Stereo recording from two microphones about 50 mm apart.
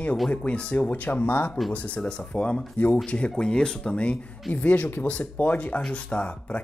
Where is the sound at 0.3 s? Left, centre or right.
Left.